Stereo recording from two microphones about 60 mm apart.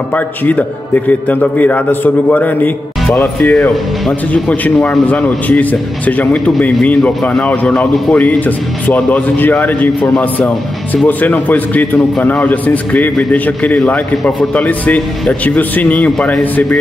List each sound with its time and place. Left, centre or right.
0.1 s a man's voice: left